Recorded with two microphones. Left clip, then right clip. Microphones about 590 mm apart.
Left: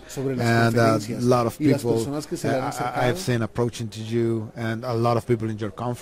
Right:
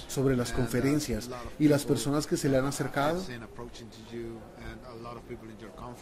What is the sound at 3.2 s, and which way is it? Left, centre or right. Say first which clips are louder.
Speech: left 17 dB; left.